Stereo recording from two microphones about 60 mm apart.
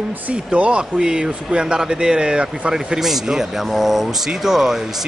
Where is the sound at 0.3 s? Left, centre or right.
Right.